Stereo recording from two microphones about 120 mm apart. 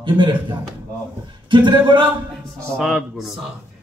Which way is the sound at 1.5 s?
40° right (ahead or behind).